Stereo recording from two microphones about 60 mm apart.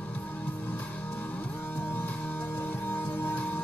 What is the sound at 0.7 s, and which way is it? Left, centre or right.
Music, left.